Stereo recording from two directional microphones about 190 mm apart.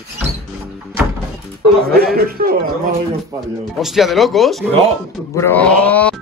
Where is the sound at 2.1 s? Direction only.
50° right (ahead or behind).